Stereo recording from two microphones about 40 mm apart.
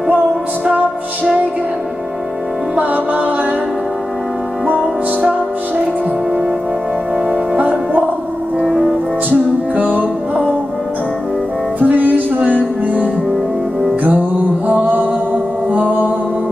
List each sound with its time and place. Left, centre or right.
2.7 s music: right
7.2 s music: right
9.8 s music: right
11.8 s music: right
15.7 s music: right